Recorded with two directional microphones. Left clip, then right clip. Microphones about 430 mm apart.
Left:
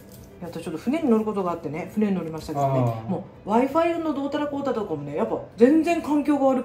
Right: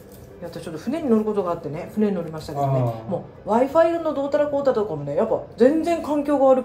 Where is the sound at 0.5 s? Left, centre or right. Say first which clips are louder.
Left 1 dB; centre.